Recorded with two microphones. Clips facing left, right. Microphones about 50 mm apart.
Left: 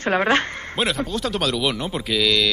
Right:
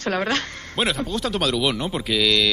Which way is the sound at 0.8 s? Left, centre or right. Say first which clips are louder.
Even; centre.